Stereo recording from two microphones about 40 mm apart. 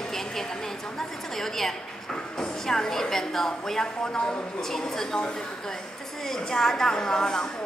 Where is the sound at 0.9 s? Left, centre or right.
Centre.